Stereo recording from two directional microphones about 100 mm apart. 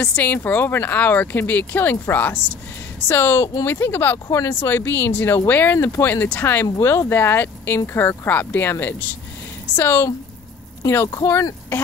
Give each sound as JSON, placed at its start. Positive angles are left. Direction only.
{"t": 0.0, "sound": "speech", "side_deg": 15}